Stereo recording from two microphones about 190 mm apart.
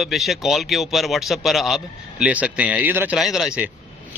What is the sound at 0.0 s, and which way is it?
A man's voice, centre (ahead or behind).